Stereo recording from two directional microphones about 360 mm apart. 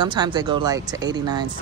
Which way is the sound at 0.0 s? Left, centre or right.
Centre.